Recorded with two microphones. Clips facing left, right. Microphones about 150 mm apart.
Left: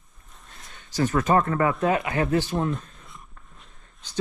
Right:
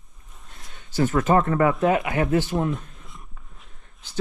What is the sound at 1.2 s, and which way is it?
Speech, 25° right (ahead or behind).